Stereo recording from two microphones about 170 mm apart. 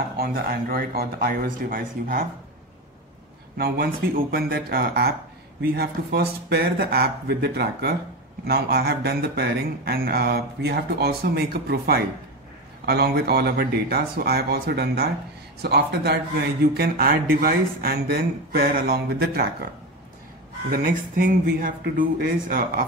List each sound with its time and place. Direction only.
0.2 s speech: 60° right (ahead or behind)
3.5 s speech: 65° right (ahead or behind)
20.7 s speech: 55° right (ahead or behind)